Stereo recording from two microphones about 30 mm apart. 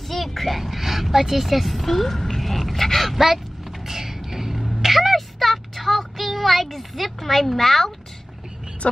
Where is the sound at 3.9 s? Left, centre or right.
Centre.